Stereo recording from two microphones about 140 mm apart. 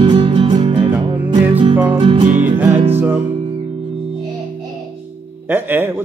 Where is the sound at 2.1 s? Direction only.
60° right (ahead or behind).